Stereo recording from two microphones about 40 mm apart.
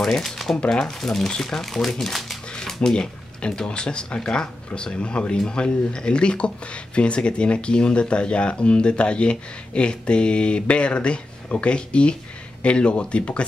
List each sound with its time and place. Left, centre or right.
0.2 s speech: centre
2.5 s a sound: centre
3.6 s speech: left